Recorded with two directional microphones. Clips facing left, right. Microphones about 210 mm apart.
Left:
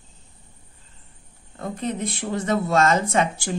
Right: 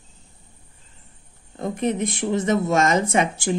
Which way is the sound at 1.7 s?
20° right (ahead or behind).